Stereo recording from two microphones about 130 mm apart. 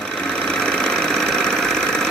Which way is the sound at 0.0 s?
5° left (ahead or behind).